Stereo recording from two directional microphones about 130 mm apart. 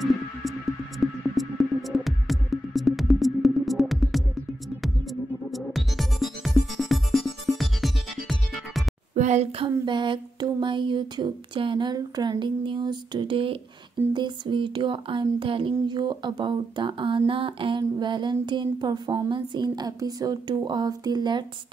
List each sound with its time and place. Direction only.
0.0 s music: centre (ahead or behind)
5.5 s music: centre (ahead or behind)
9.1 s a sound: 60° right (ahead or behind); by 21.5 s 35° right (ahead or behind)